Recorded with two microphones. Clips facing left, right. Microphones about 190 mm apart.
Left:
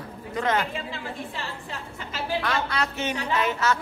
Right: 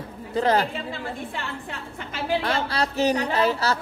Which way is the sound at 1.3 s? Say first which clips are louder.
Right 2 dB; 55° right (ahead or behind).